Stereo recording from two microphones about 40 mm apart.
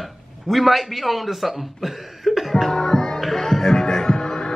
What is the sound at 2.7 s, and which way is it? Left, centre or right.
Music, centre.